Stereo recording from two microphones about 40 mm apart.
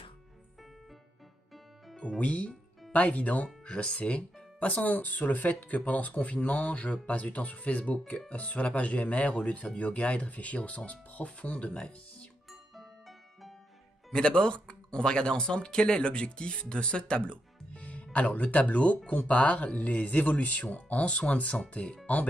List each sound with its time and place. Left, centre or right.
2.0 s speech: left
3.6 s speech: left
4.8 s speech: left
14.1 s speech: left
21.5 s speech: left